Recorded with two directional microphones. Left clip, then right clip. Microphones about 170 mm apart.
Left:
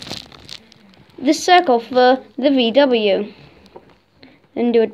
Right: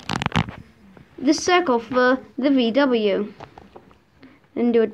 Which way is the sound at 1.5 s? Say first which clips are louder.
Left 9 dB; 25° right (ahead or behind).